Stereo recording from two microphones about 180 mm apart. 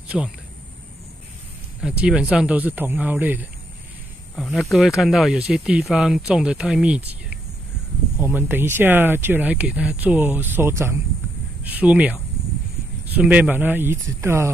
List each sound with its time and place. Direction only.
0.1 s speech: centre (ahead or behind)
1.8 s speech: 5° right (ahead or behind)
4.4 s speech: centre (ahead or behind)
8.2 s speech: 10° right (ahead or behind)